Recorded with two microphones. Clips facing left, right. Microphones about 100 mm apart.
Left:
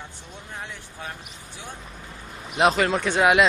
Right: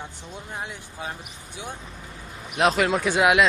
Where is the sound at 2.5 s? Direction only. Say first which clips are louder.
Left 1 dB; centre (ahead or behind).